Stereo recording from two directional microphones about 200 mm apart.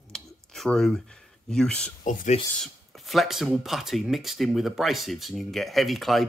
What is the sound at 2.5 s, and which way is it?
Speech, centre (ahead or behind).